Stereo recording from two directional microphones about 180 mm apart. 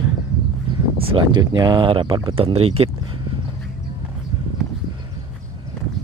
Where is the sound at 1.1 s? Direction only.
25° right (ahead or behind).